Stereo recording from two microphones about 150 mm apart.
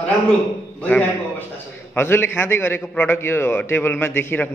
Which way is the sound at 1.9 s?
15° left (ahead or behind).